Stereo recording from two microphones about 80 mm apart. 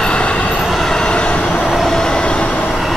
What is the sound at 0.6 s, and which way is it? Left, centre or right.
Train, centre.